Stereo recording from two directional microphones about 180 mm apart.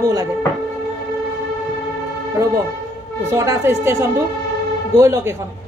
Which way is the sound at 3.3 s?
15° right (ahead or behind).